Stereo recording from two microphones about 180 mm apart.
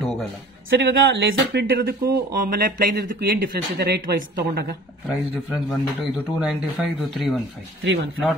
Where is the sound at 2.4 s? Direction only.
55° right (ahead or behind).